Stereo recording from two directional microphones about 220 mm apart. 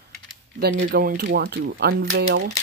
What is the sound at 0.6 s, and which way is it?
Speech, 45° right (ahead or behind).